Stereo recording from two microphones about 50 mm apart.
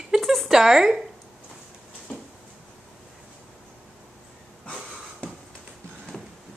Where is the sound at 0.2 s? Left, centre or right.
Centre.